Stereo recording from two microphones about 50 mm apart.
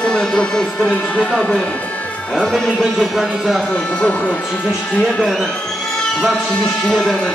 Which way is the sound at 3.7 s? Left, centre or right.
Centre.